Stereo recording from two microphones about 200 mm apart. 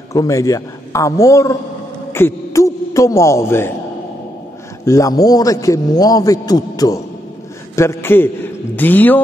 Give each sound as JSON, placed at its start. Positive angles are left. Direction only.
{"t": 0.1, "sound": "a man's voice", "side_deg": 15}
{"t": 4.8, "sound": "a man's voice", "side_deg": 15}